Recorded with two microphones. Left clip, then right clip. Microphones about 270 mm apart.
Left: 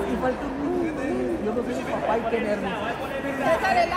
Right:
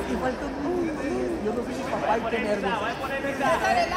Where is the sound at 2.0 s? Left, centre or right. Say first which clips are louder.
Left 1 dB; right.